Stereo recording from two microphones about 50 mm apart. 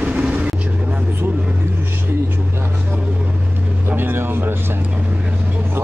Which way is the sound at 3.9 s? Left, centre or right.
Right.